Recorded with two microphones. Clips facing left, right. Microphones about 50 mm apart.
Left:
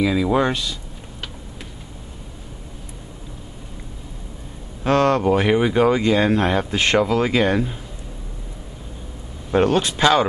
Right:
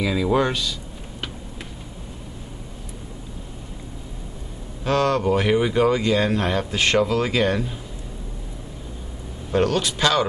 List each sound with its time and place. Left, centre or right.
0.0 s speech: centre
4.8 s speech: left
5.2 s speech: centre
9.5 s speech: left